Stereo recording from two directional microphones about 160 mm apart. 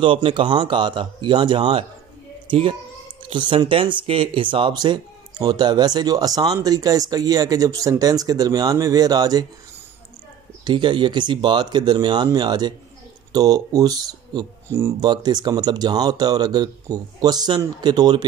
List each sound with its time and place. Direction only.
0.0 s speech: 30° right (ahead or behind)
3.2 s speech: 30° right (ahead or behind)
10.6 s speech: 30° right (ahead or behind)